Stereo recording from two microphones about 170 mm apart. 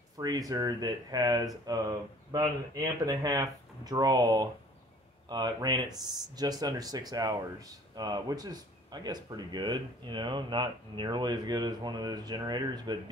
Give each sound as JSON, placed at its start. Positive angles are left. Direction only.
{"t": 0.2, "sound": "speech", "side_deg": -20}